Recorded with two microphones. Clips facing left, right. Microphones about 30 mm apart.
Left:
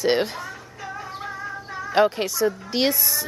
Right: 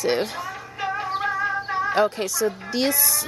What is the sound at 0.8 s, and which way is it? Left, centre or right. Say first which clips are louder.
Music: right 8 dB; right.